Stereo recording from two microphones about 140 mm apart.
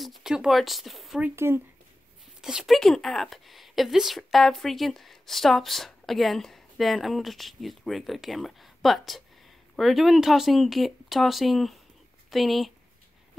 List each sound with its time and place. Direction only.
0.0 s speech: centre (ahead or behind)
1.3 s speech: 15° right (ahead or behind)
2.4 s speech: centre (ahead or behind)